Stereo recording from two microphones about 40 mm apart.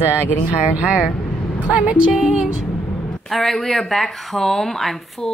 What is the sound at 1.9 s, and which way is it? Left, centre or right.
Music, right.